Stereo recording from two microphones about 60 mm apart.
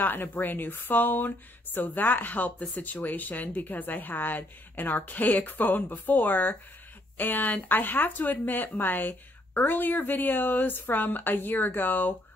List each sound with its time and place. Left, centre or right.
0.0 s speech: left